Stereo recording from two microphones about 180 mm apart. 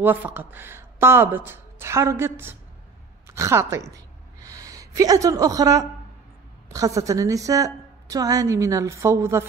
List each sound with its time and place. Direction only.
0.0 s a woman's voice: 10° right (ahead or behind)
3.9 s a sound: 20° right (ahead or behind)
6.7 s a woman's voice: 20° right (ahead or behind)